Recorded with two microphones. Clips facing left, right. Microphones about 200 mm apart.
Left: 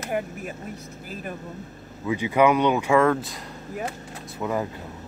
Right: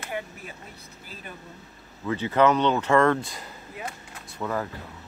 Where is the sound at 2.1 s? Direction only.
10° left (ahead or behind).